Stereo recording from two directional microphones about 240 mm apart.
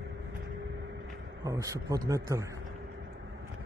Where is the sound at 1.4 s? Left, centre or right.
Centre.